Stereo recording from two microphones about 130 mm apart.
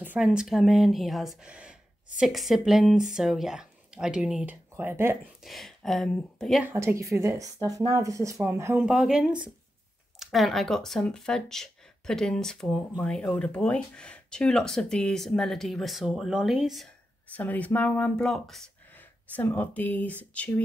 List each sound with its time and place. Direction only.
0.0 s speech: 10° right (ahead or behind)
5.4 s speech: centre (ahead or behind)
6.6 s a woman's voice: 20° right (ahead or behind)
8.8 s speech: 5° right (ahead or behind)
17.3 s speech: 10° left (ahead or behind)